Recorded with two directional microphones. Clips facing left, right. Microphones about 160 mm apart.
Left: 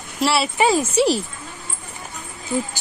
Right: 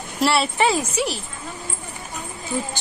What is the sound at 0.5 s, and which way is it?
Speech, 15° left (ahead or behind).